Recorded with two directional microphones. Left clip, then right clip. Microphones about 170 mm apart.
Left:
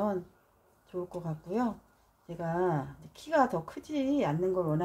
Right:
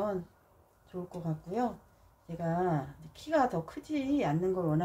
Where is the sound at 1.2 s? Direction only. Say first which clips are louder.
Right 2 dB; 40° left (ahead or behind).